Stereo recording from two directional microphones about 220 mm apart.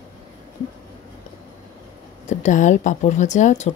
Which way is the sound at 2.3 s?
35° left (ahead or behind).